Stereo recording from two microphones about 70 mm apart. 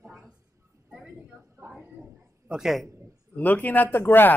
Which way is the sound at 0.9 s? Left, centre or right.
Centre.